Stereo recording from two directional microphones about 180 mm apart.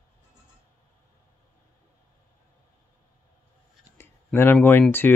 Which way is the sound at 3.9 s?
15° left (ahead or behind).